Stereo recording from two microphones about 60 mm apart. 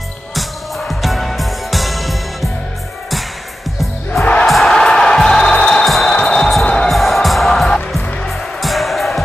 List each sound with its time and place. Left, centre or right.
0.3 s music: centre
4.2 s music: centre
4.5 s music: centre
5.9 s music: centre
6.1 s music: centre
6.9 s music: centre